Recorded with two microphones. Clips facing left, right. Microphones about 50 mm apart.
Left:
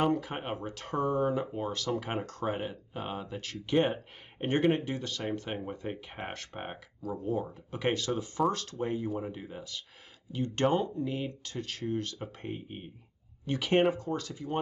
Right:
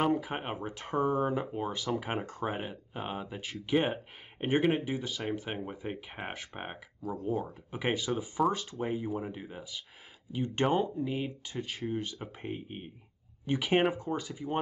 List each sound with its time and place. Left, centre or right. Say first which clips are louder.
0.0 s speech: even; centre